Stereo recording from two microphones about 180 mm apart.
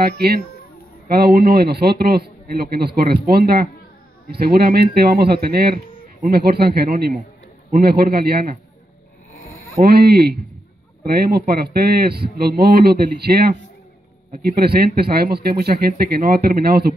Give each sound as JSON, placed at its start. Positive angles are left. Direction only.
{"t": 1.0, "sound": "speech", "side_deg": -60}
{"t": 9.8, "sound": "speech", "side_deg": -60}